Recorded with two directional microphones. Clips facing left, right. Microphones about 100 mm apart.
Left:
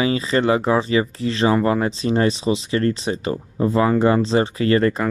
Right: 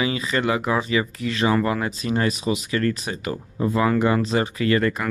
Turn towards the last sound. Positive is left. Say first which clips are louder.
# left 3 dB
turn(degrees=35)  # may be behind; listen again after turning